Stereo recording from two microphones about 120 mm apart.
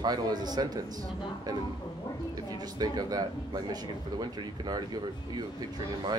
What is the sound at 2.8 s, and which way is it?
Speech, 35° right (ahead or behind).